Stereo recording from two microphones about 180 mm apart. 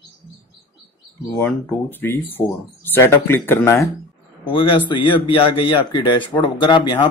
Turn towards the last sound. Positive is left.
turn(degrees=25)  # may be behind; listen again after turning